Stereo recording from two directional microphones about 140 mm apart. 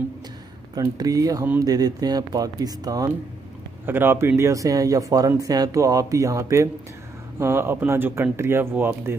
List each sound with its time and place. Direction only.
0.7 s speech: 25° right (ahead or behind)
3.8 s speech: 15° right (ahead or behind)